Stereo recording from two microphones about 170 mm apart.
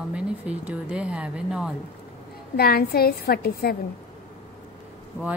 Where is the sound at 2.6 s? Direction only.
65° left (ahead or behind).